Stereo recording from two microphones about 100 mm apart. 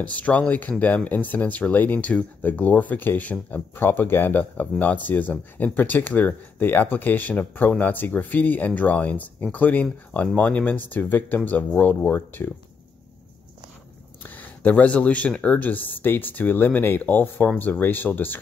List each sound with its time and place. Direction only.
0.0 s speech: 15° left (ahead or behind)
14.2 s speech: 15° left (ahead or behind)